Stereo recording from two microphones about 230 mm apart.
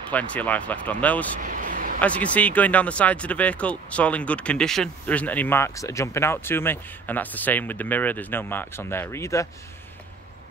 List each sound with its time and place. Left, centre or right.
0.1 s speech: centre
1.4 s a sound: right
2.0 s speech: centre